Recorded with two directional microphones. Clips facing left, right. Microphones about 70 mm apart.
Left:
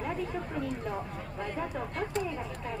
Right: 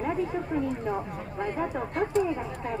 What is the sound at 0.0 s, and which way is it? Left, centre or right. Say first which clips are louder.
A woman's voice: right 5 dB; right.